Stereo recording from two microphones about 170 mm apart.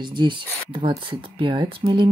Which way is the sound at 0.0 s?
25° right (ahead or behind).